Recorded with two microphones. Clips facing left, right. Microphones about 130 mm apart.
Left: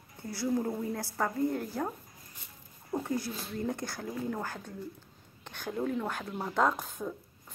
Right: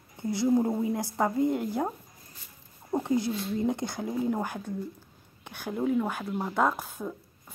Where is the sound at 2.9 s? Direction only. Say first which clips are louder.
Right 6 dB; 20° right (ahead or behind).